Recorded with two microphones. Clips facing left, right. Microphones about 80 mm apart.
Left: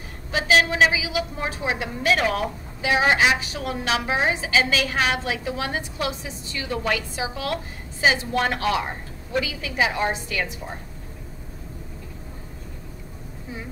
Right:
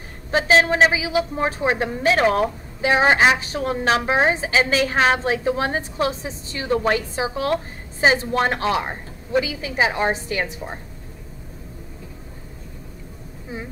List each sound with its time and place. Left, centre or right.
0.3 s a woman's voice: right